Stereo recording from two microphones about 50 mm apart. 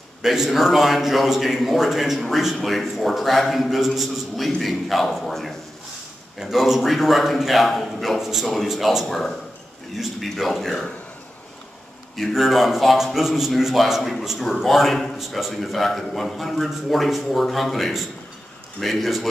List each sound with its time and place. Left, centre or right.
0.2 s a man's voice: centre
12.2 s a man's voice: centre